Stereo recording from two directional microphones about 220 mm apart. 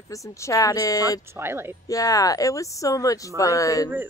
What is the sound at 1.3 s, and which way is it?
Speech, 10° right (ahead or behind).